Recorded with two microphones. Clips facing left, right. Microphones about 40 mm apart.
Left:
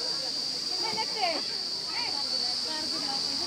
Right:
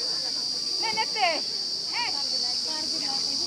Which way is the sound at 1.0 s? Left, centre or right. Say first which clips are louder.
Right 6 dB; right.